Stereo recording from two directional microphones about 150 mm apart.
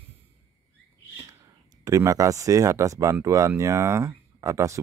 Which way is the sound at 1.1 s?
20° right (ahead or behind).